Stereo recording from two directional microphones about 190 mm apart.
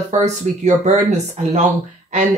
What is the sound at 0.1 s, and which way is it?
A woman's voice, 40° right (ahead or behind).